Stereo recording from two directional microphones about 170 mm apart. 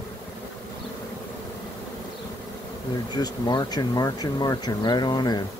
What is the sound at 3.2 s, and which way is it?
Speech, 25° left (ahead or behind).